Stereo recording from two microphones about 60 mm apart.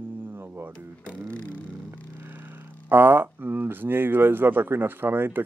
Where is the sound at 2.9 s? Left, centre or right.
Right.